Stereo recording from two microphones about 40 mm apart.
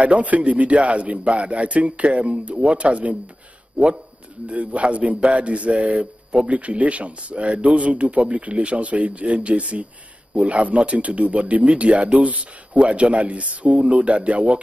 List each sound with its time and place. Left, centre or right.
0.0 s a man's voice: right